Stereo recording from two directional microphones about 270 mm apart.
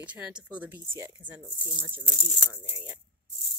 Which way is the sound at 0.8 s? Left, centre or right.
Centre.